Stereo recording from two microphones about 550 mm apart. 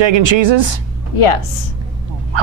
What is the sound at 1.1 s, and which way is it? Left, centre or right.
Speech, left.